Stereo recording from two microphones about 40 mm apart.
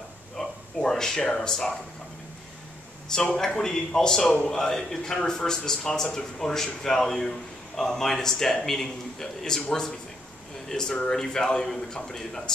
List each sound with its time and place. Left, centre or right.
0.4 s speech: centre
3.1 s a man's voice: centre